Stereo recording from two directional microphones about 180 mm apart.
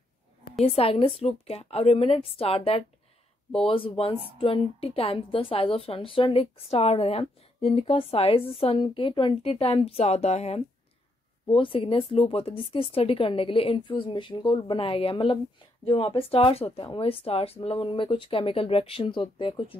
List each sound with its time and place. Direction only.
0.7 s a woman's voice: 30° left (ahead or behind)